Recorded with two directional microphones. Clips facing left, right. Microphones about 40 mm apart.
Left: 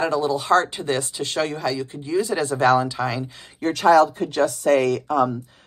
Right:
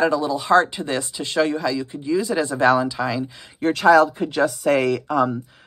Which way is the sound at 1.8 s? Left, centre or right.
Left.